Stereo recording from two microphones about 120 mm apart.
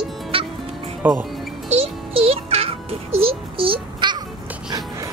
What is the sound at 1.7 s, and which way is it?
Music, 55° right (ahead or behind).